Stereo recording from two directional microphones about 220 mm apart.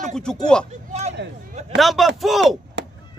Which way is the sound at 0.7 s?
30° right (ahead or behind).